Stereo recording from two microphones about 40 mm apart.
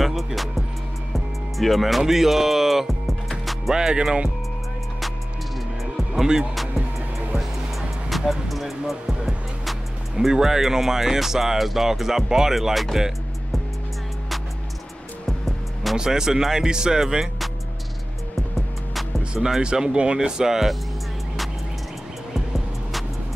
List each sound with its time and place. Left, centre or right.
0.0 s speech: centre
1.1 s music: centre
3.7 s speech: centre
7.3 s music: centre
10.1 s speech: centre
12.9 s music: centre
15.2 s music: centre
16.0 s speech: centre
19.3 s speech: centre
19.6 s speech: right